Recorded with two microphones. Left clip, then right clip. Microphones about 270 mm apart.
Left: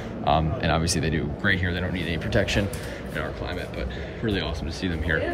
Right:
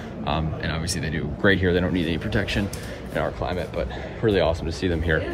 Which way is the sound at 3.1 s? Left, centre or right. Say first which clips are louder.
Right 6 dB; centre.